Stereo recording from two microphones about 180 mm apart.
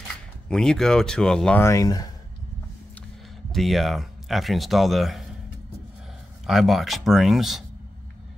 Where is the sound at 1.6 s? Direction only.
15° left (ahead or behind).